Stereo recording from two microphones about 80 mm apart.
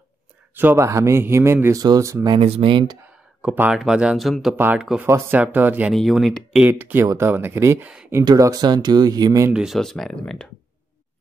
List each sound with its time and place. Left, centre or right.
0.6 s speech: right
0.8 s a man's voice: right
1.8 s a man's voice: right
2.2 s speech: right
3.7 s speech: centre
5.0 s a man's voice: right
5.4 s speech: right
5.9 s speech: centre
6.7 s a man's voice: right
7.8 s speech: centre
8.4 s speech: right
8.6 s speech: right
9.5 s speech: centre
9.8 s speech: centre